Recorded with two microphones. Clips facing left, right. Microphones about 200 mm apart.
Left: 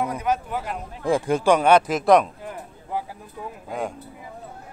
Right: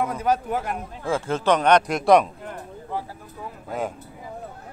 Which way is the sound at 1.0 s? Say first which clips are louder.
Left 3 dB; 15° left (ahead or behind).